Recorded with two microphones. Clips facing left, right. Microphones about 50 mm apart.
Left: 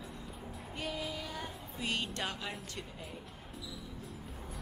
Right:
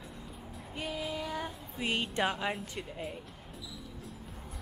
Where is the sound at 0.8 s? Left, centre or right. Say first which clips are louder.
Right 3 dB; centre.